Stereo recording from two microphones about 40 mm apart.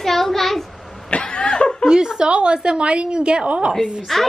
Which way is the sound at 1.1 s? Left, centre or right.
Left.